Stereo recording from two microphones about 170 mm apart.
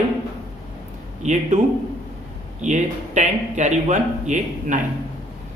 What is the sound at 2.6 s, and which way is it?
A man's voice, 45° right (ahead or behind).